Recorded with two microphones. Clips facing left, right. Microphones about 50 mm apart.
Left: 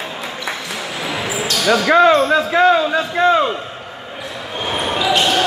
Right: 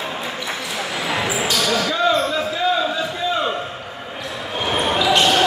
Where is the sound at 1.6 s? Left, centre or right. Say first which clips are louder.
Left 10 dB; left.